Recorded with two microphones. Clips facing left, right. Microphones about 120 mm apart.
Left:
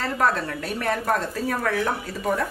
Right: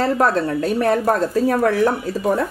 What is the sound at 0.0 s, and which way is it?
A woman's voice, 35° right (ahead or behind).